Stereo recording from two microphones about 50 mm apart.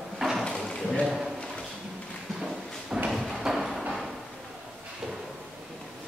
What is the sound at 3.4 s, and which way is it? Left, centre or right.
Music, centre.